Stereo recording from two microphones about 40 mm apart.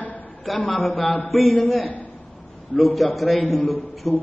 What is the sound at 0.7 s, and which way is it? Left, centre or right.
Speech, centre.